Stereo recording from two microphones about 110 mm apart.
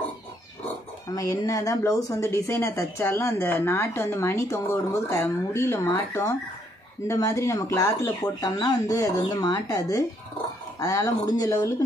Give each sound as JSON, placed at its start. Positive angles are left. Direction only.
{"t": 1.0, "sound": "speech", "side_deg": 30}
{"t": 8.4, "sound": "speech", "side_deg": 35}